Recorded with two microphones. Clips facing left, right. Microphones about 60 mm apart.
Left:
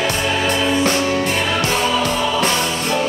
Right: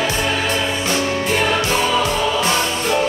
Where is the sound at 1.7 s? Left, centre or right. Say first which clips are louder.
Even; centre.